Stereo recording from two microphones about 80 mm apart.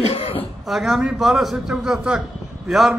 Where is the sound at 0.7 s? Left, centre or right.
Centre.